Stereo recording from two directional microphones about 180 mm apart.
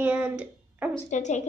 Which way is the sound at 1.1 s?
40° left (ahead or behind).